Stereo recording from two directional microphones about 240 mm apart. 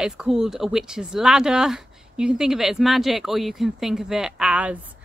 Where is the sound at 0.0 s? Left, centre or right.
Centre.